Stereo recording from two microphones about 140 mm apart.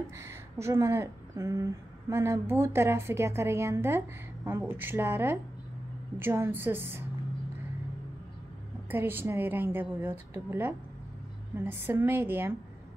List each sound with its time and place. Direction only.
0.2 s a woman's voice: 20° right (ahead or behind)
8.9 s a woman's voice: 15° right (ahead or behind)